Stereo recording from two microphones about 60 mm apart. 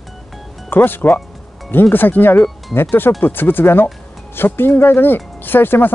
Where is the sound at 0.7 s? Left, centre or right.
Left.